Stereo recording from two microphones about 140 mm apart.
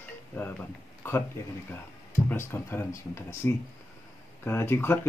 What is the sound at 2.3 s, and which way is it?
Speech, 15° left (ahead or behind).